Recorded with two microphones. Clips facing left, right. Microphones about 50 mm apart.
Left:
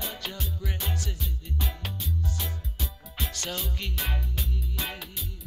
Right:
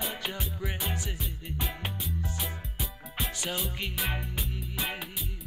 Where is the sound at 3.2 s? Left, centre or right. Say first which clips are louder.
Right 1 dB; centre.